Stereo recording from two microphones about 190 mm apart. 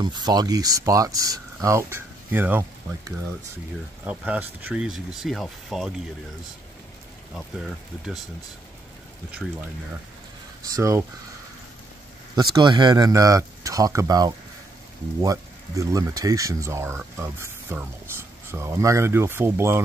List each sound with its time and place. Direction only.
0.0 s speech: 20° right (ahead or behind)
4.0 s speech: 5° right (ahead or behind)
7.3 s speech: centre (ahead or behind)
10.7 s speech: 15° right (ahead or behind)
12.5 s speech: 25° right (ahead or behind)